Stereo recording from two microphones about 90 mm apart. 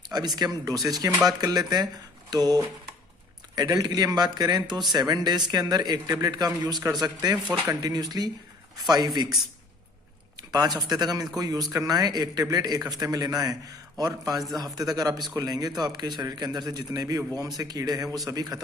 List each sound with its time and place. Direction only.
0.1 s a man's voice: 50° right (ahead or behind)